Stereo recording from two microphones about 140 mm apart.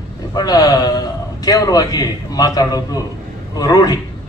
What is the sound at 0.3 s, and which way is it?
A man's voice, 25° left (ahead or behind).